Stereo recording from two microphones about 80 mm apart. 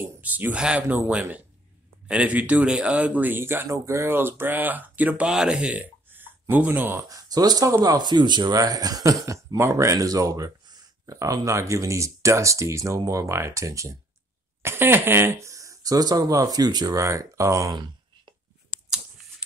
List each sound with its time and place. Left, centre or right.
0.0 s speech: right
7.0 s speech: right
14.6 s speech: right
17.7 s a sound: right